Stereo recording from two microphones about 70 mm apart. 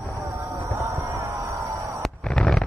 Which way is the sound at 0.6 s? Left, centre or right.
Right.